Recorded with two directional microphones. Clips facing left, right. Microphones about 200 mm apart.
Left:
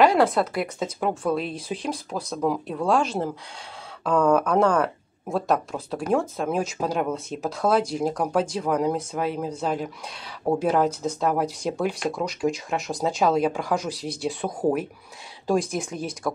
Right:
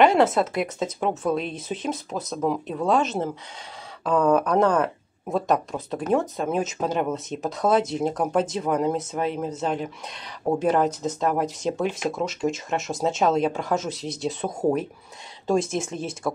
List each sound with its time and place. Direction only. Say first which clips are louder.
0.0 s speech: right 1 dB; 5° right (ahead or behind)
13.8 s speech: even; 20° right (ahead or behind)
15.6 s speech: right 2 dB; 25° right (ahead or behind)